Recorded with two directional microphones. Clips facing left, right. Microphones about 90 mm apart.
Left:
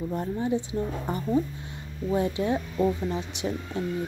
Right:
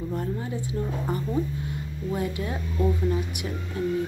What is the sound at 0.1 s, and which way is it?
A woman's voice, 25° left (ahead or behind).